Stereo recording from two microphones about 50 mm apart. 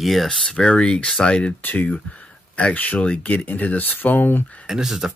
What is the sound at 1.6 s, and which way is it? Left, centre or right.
Speech, left.